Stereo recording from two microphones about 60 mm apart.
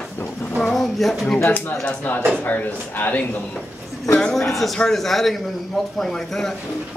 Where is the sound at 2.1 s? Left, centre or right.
Left.